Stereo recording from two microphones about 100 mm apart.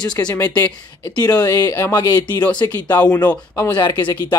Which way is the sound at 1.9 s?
45° left (ahead or behind).